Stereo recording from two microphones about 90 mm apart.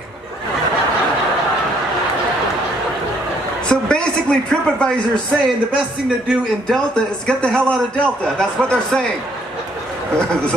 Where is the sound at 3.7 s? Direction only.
10° left (ahead or behind).